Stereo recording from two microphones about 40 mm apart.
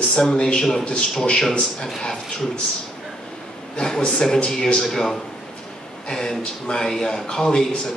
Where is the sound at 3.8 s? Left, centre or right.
Left.